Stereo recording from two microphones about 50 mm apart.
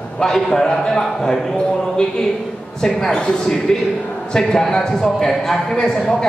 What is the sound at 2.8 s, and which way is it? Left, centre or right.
A man's voice, centre.